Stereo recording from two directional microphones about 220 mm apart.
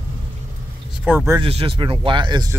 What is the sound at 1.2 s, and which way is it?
Speech, 20° right (ahead or behind).